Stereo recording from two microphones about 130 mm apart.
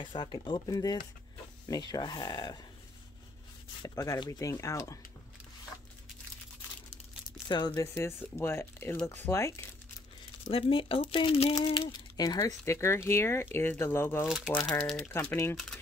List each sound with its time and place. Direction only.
0.0 s speech: 35° left (ahead or behind)
3.8 s speech: 25° left (ahead or behind)
7.4 s speech: 35° left (ahead or behind)
7.9 s speech: 20° left (ahead or behind)
10.5 s speech: 45° left (ahead or behind)
11.9 s speech: 30° left (ahead or behind)
14.2 s speech: 5° right (ahead or behind)
15.0 s speech: 20° left (ahead or behind)